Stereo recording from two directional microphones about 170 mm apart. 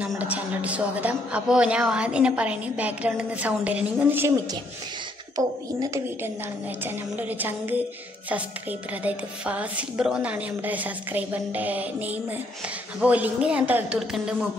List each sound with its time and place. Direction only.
0.1 s a man's voice: 10° right (ahead or behind)
5.3 s a man's voice: 20° right (ahead or behind)
9.0 s a man's voice: 10° right (ahead or behind)